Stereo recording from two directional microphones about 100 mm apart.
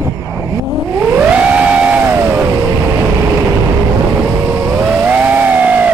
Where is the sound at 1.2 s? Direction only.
15° right (ahead or behind).